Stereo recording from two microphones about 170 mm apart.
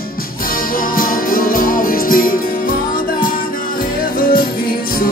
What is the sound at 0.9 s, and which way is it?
Music, 55° left (ahead or behind).